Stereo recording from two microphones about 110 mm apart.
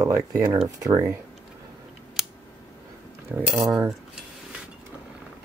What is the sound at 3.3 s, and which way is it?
Speech, 10° right (ahead or behind).